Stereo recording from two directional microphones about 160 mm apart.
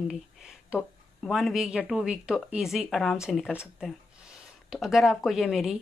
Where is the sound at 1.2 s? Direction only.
Centre (ahead or behind).